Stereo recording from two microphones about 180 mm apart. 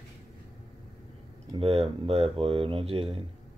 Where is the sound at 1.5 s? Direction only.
30° right (ahead or behind).